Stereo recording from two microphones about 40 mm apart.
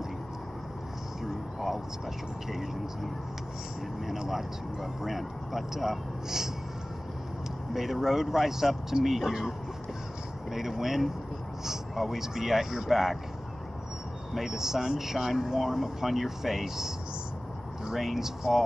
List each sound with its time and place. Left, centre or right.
2.5 s speech: centre
4.2 s speech: centre
7.7 s speech: centre
10.5 s speech: centre
14.3 s speech: centre